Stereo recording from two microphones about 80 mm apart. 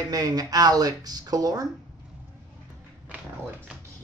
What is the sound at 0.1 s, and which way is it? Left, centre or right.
Speech, right.